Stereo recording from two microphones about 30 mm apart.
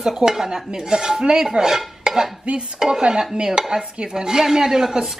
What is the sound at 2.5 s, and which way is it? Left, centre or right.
Speech, right.